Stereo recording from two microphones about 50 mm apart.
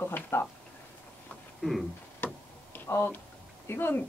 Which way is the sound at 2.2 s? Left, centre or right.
Left.